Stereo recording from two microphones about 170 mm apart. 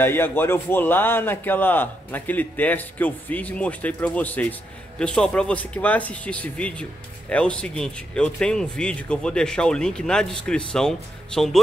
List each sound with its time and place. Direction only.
0.0 s a man's voice: 10° left (ahead or behind)